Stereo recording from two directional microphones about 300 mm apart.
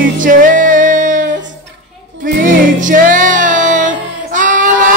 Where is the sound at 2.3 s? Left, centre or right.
Right.